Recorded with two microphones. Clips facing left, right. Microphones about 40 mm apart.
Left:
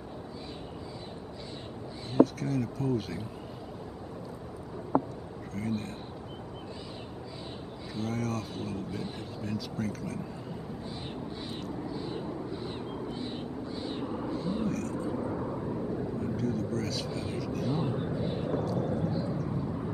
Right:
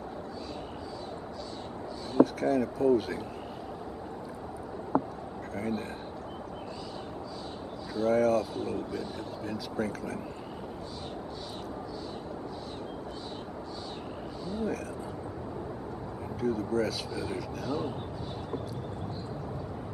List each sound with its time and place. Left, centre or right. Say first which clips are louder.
2.4 s speech: right 6 dB; centre
5.6 s speech: even; centre
8.0 s speech: right 9 dB; centre
11.9 s vehicle: left 3 dB; left
13.8 s vehicle: left 5 dB; left
14.7 s vehicle: left 2 dB; centre
16.2 s vehicle: right 4 dB; centre
17.1 s speech: right 1 dB; centre
17.4 s speech: left 3 dB; centre
17.6 s speech: even; centre
18.1 s vehicle: left 6 dB; left
18.6 s vehicle: left 8 dB; centre